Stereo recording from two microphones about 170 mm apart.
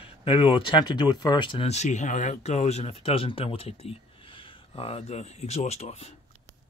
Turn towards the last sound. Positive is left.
turn(degrees=40)  # may be behind; listen again after turning